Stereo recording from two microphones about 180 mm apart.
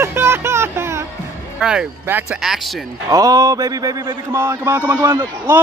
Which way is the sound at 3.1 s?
20° right (ahead or behind).